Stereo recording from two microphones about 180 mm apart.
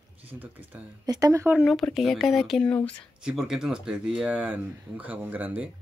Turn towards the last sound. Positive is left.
turn(degrees=-10)  # may be behind; listen again after turning